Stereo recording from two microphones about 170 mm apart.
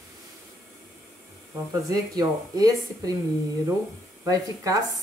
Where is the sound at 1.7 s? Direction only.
20° right (ahead or behind).